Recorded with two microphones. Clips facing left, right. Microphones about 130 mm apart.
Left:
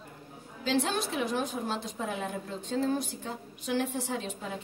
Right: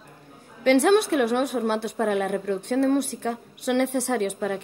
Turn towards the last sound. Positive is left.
turn(degrees=-70)  # may be behind; listen again after turning